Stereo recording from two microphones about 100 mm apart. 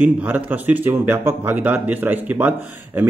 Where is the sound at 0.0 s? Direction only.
20° right (ahead or behind).